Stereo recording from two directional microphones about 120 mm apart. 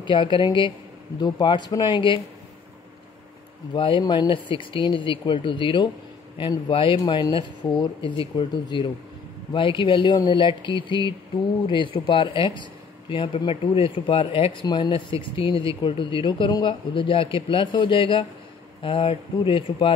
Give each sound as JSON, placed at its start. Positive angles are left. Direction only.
{"t": 0.0, "sound": "speech", "side_deg": 40}
{"t": 3.7, "sound": "speech", "side_deg": 45}